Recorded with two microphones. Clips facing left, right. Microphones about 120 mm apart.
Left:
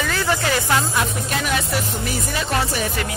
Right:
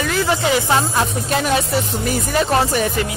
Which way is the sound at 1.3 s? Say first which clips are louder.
Right 6 dB; 40° right (ahead or behind).